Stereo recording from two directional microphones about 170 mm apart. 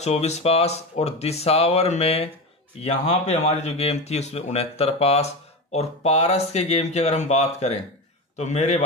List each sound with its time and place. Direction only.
0.0 s a man's voice: 40° left (ahead or behind)